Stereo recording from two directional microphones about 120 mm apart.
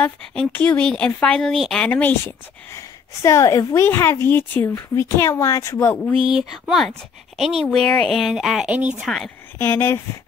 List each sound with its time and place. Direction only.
0.0 s speech: 10° left (ahead or behind)
1.9 s a woman's voice: 15° left (ahead or behind)
6.7 s speech: centre (ahead or behind)
8.7 s speech: 15° right (ahead or behind)
9.0 s speech: centre (ahead or behind)
9.6 s a woman's voice: 20° left (ahead or behind)